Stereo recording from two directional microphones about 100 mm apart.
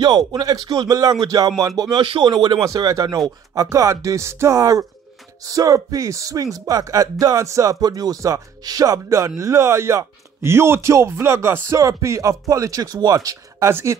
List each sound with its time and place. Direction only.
0.0 s speech: 45° right (ahead or behind)
2.0 s speech: 60° right (ahead or behind)
2.6 s speech: 35° right (ahead or behind)